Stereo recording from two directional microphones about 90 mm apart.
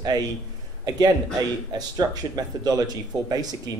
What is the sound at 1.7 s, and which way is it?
Speech, 50° right (ahead or behind).